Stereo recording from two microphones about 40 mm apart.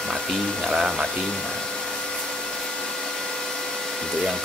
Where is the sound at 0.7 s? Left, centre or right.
Centre.